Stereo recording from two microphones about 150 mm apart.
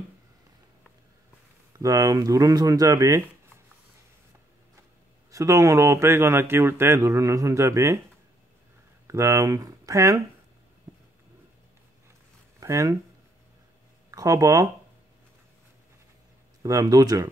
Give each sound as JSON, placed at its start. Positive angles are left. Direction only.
{"t": 1.8, "sound": "a man's voice", "side_deg": -20}
{"t": 5.3, "sound": "a man's voice", "side_deg": -20}
{"t": 9.0, "sound": "speech", "side_deg": -20}
{"t": 12.5, "sound": "speech", "side_deg": -20}
{"t": 14.1, "sound": "a man's voice", "side_deg": -20}
{"t": 16.6, "sound": "a man's voice", "side_deg": -25}